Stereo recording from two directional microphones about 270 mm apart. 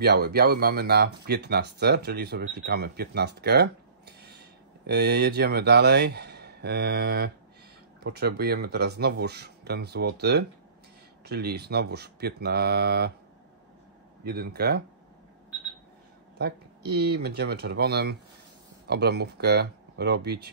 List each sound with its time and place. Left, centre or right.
0.0 s speech: right
4.8 s speech: right
14.2 s speech: right
16.3 s speech: right